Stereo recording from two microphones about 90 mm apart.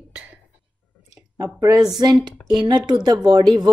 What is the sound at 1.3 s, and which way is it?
A woman's voice, 35° right (ahead or behind).